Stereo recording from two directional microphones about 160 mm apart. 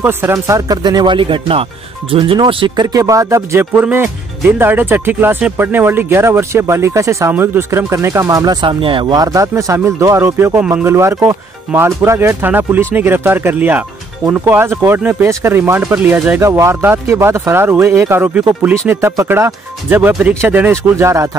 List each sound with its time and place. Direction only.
0.0 s speech: 15° right (ahead or behind)